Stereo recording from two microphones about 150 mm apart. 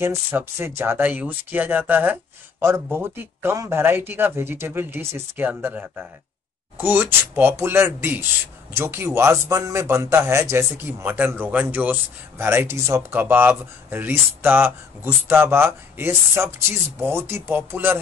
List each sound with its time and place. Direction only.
0.0 s speech: 15° right (ahead or behind)